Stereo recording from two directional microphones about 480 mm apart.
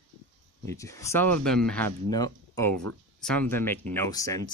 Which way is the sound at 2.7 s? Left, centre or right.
Right.